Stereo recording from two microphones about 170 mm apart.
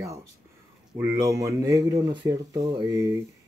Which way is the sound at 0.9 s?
15° right (ahead or behind).